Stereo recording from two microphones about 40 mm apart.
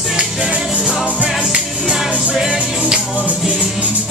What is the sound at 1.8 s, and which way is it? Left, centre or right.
Music, centre.